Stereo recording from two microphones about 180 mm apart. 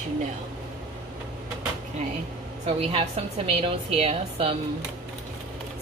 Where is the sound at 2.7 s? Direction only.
35° right (ahead or behind).